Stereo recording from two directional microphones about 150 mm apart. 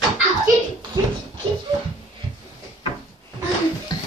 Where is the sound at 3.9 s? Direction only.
25° left (ahead or behind).